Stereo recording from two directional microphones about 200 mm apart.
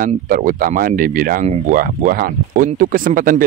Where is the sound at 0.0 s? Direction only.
45° right (ahead or behind).